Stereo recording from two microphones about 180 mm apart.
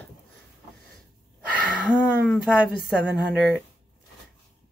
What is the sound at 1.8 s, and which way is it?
Speech, 5° left (ahead or behind).